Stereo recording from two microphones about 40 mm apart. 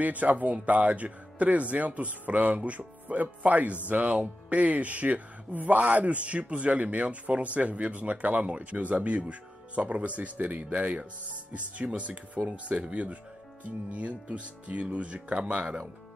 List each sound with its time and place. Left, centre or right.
0.0 s speech: right